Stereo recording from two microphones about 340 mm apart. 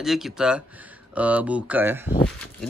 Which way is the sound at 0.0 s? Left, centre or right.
Centre.